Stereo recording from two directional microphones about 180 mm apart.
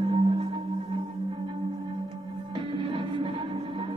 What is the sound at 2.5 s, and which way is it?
Music, 30° right (ahead or behind).